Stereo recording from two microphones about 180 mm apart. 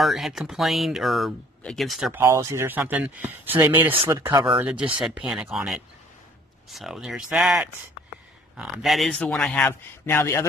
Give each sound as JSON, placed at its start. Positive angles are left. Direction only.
{"t": 0.0, "sound": "speech", "side_deg": 0}
{"t": 2.1, "sound": "speech", "side_deg": -15}